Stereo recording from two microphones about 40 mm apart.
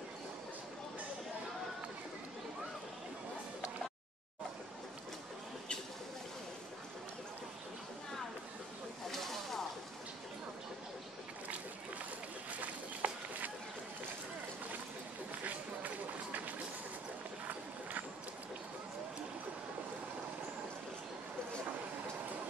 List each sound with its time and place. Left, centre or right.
9.1 s snake: centre
12.5 s a sound: right
15.4 s run: right